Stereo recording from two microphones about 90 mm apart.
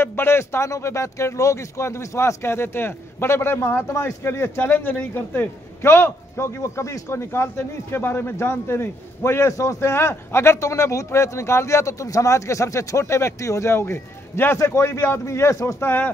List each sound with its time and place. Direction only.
0.0 s a man's voice: 25° left (ahead or behind)